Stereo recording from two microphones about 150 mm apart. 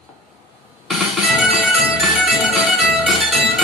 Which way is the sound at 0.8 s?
Centre (ahead or behind).